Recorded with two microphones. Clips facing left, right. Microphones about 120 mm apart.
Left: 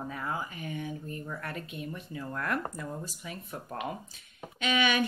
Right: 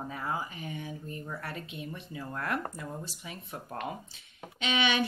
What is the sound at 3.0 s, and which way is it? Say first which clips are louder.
Speech: left 2 dB; 40° left (ahead or behind).